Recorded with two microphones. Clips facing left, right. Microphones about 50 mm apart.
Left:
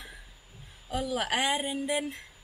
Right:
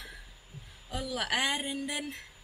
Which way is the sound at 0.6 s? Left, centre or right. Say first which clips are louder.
Left 5 dB; centre.